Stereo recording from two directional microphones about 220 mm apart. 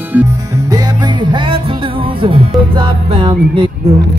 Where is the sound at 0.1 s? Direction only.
10° right (ahead or behind).